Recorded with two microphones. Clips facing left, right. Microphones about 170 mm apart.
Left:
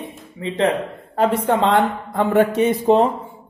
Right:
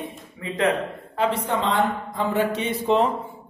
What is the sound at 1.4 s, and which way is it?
Speech, 65° left (ahead or behind).